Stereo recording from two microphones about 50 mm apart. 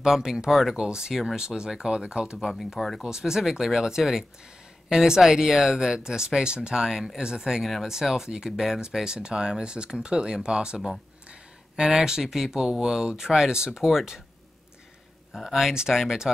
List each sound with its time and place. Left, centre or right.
0.0 s speech: centre
2.3 s speech: centre
3.0 s speech: centre
15.3 s speech: centre